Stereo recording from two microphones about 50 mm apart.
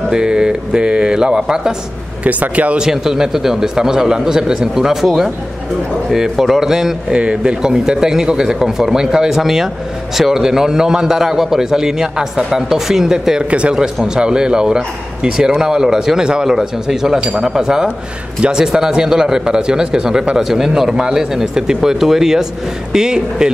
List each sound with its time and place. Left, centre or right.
0.1 s speech: centre
2.2 s speech: right
2.8 s speech: centre
13.5 s speech: right